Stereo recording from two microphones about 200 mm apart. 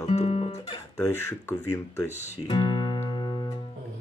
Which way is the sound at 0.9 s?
15° left (ahead or behind).